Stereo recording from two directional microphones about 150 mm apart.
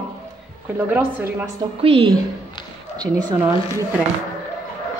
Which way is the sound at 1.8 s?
40° right (ahead or behind).